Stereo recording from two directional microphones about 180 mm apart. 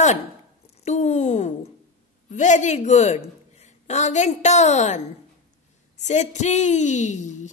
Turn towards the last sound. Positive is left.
turn(degrees=40)  # may be behind; listen again after turning